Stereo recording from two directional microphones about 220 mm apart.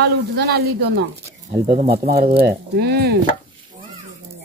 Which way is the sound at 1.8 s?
45° right (ahead or behind).